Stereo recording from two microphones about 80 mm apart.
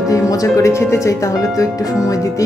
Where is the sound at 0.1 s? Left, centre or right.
Left.